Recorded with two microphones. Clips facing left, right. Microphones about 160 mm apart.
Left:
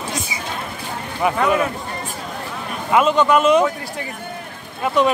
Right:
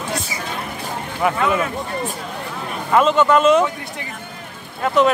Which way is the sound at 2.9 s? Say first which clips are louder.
Right 1 dB; 15° left (ahead or behind).